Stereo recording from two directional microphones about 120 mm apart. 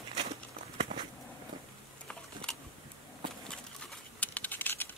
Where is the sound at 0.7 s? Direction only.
60° right (ahead or behind).